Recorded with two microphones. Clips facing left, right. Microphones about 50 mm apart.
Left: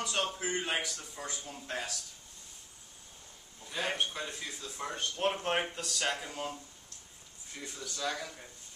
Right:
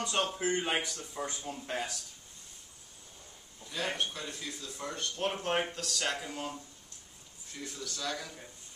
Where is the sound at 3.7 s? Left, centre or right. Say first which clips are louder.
Left 1 dB; centre.